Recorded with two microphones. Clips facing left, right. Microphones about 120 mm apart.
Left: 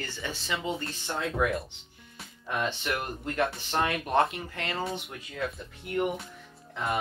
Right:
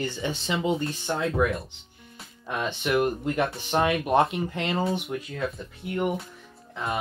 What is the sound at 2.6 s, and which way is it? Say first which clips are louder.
Speech: right 10 dB; 15° right (ahead or behind).